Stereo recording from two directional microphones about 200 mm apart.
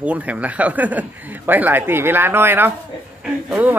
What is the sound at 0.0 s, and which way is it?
Speech, 5° right (ahead or behind).